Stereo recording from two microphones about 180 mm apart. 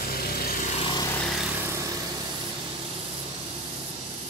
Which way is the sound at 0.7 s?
30° left (ahead or behind).